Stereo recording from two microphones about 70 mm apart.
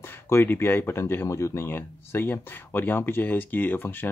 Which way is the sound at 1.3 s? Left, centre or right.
Left.